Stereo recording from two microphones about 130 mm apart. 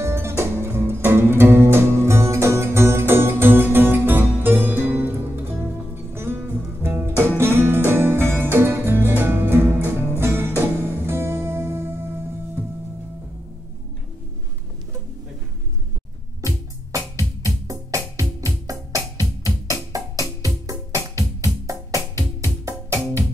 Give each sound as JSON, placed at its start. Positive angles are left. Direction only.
{"t": 0.0, "sound": "music", "side_deg": -20}
{"t": 16.3, "sound": "music", "side_deg": -25}